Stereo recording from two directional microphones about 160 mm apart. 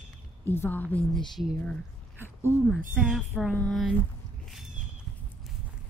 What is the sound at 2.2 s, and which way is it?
Speech, 15° right (ahead or behind).